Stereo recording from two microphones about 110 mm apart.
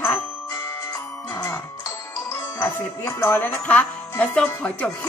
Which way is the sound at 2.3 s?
25° left (ahead or behind).